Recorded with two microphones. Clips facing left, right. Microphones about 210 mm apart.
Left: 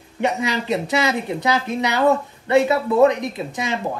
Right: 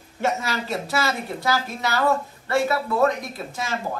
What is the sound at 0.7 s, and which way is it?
Speech, 20° left (ahead or behind).